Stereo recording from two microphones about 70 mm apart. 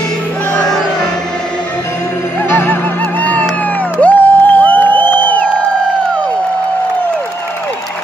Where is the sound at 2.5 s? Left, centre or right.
Left.